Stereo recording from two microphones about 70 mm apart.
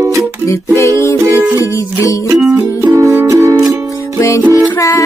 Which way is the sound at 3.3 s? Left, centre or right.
Right.